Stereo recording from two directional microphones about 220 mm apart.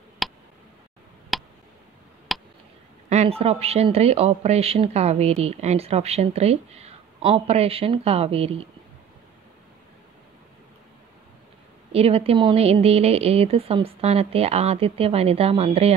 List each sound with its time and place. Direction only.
0.2 s tick: centre (ahead or behind)
1.3 s a sound: centre (ahead or behind)
3.1 s speech: 30° right (ahead or behind)
11.9 s speech: 25° right (ahead or behind)